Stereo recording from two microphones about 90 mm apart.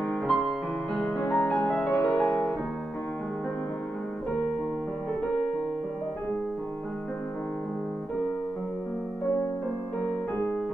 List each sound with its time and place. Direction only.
0.3 s music: 5° left (ahead or behind)